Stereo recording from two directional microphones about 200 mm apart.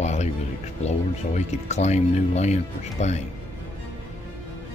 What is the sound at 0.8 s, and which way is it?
Speech, 35° left (ahead or behind).